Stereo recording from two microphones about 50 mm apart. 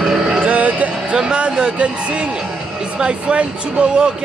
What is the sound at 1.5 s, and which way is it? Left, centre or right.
Speech, right.